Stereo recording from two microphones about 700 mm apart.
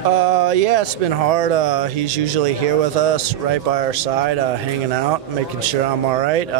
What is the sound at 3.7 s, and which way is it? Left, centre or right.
Speech, right.